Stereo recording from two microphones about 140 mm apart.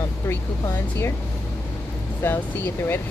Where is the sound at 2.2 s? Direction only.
15° left (ahead or behind).